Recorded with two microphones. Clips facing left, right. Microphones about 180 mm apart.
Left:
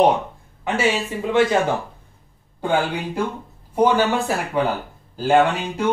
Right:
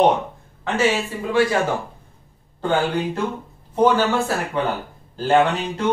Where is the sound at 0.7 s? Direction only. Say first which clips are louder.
Right 1 dB; 10° left (ahead or behind).